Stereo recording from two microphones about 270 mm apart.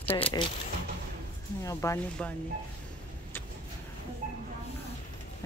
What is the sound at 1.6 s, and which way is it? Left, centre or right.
Speech, centre.